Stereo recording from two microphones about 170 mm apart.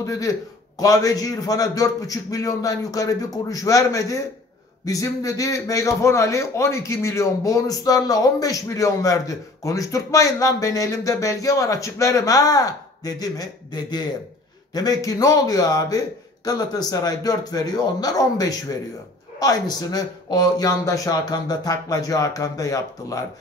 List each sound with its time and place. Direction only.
0.0 s a man's voice: 20° left (ahead or behind)